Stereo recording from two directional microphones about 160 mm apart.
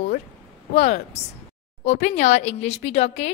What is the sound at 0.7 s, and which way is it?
A woman's voice, 45° left (ahead or behind).